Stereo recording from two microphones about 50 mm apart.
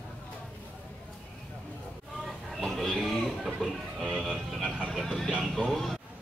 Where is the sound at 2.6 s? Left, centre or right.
Centre.